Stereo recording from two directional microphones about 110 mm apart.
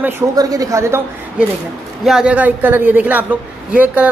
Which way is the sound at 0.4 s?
35° right (ahead or behind).